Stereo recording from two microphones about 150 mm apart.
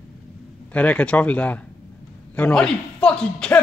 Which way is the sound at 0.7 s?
10° left (ahead or behind).